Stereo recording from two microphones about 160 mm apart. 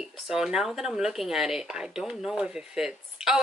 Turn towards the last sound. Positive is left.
turn(degrees=-5)  # may be behind; listen again after turning